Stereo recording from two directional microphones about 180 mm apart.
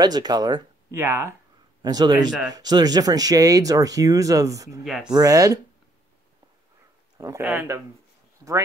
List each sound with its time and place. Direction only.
0.0 s a man's voice: 20° right (ahead or behind)
4.8 s speech: centre (ahead or behind)
5.1 s speech: 20° right (ahead or behind)
7.2 s speech: 15° right (ahead or behind)